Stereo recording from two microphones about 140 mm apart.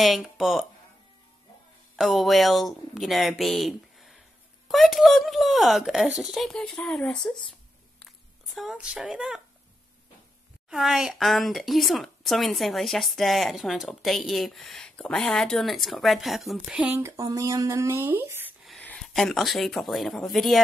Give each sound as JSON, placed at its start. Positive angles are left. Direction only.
{"t": 0.0, "sound": "speech", "side_deg": 0}
{"t": 2.0, "sound": "speech", "side_deg": 0}
{"t": 8.5, "sound": "speech", "side_deg": -5}
{"t": 10.7, "sound": "speech", "side_deg": 0}
{"t": 17.2, "sound": "speech", "side_deg": -25}
{"t": 18.9, "sound": "speech", "side_deg": 5}